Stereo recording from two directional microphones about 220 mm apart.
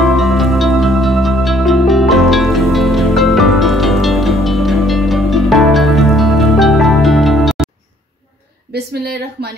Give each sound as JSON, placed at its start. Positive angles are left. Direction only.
{"t": 0.0, "sound": "music", "side_deg": 0}
{"t": 8.7, "sound": "a woman's voice", "side_deg": -45}